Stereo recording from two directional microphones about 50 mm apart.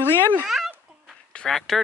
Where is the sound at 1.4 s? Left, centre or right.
Centre.